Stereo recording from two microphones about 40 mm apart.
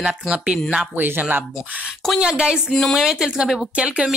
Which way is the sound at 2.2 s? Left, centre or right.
Right.